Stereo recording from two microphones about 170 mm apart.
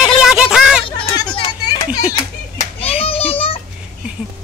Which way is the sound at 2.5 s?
35° left (ahead or behind).